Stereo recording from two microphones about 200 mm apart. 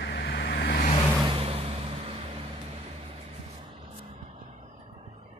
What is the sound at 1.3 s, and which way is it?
Vehicle, 30° right (ahead or behind).